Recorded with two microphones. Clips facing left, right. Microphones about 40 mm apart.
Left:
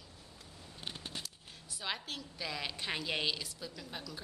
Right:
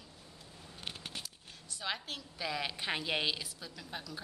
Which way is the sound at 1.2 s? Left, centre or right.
Centre.